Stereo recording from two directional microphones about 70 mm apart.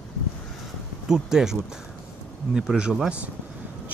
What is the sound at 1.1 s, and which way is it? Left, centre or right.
Speech, centre.